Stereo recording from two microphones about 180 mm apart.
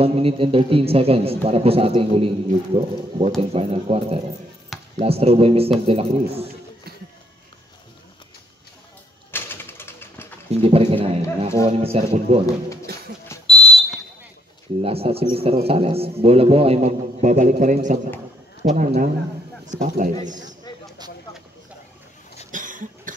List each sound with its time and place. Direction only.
0.0 s a man's voice: 35° right (ahead or behind)
9.3 s a sound: 10° left (ahead or behind)
10.5 s pigeon: 35° right (ahead or behind)
11.6 s a man's voice: 35° right (ahead or behind)
13.5 s smoke detector: 30° left (ahead or behind)
14.8 s a man's voice: 30° right (ahead or behind)
22.5 s cough: 45° right (ahead or behind)